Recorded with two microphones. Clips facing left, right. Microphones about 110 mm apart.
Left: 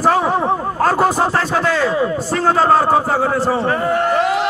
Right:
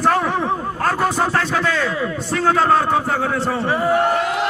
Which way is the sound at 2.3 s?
5° left (ahead or behind).